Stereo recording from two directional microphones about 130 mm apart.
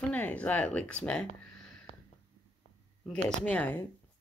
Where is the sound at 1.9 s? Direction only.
50° left (ahead or behind).